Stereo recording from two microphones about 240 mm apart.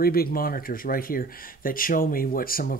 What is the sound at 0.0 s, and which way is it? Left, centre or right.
Speech, left.